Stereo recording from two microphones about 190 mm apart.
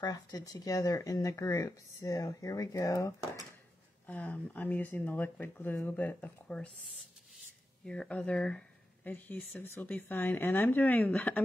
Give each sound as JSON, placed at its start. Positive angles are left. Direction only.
{"t": 0.0, "sound": "speech", "side_deg": 20}
{"t": 7.8, "sound": "speech", "side_deg": 5}